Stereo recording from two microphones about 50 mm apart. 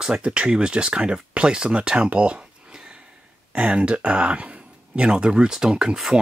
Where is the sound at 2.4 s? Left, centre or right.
Centre.